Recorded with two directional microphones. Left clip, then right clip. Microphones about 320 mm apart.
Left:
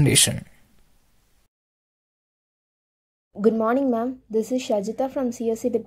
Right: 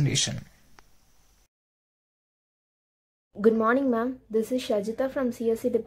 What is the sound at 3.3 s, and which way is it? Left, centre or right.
Speech, centre.